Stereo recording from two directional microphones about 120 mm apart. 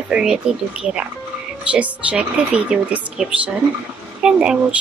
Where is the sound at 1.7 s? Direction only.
10° right (ahead or behind).